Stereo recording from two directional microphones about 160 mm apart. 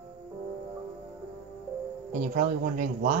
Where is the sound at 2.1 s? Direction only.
55° right (ahead or behind).